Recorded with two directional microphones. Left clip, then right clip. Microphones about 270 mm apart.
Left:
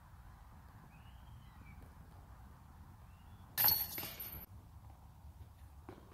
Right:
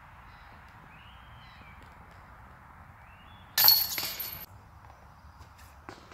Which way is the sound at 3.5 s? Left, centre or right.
Centre.